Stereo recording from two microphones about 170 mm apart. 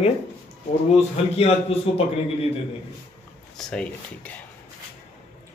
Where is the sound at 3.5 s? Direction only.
5° left (ahead or behind).